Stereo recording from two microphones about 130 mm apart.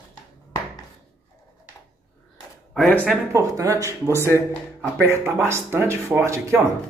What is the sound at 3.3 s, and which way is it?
Speech, 25° right (ahead or behind).